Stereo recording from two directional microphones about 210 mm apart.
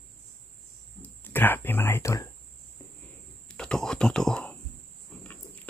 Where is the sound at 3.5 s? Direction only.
5° left (ahead or behind).